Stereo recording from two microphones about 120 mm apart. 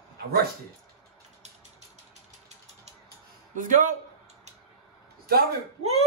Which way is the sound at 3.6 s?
90° right.